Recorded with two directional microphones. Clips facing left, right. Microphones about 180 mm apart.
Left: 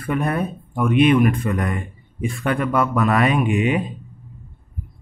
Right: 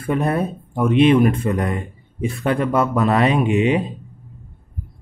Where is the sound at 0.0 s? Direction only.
25° right (ahead or behind).